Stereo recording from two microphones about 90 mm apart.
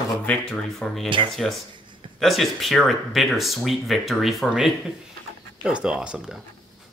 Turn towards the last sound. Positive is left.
turn(degrees=-10)  # may be behind; listen again after turning